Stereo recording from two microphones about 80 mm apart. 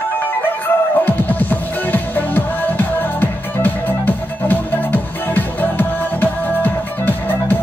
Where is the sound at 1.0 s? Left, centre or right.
Left.